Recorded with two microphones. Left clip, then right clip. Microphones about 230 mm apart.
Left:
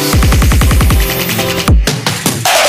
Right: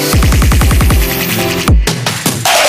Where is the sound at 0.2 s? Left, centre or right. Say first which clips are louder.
Even; centre.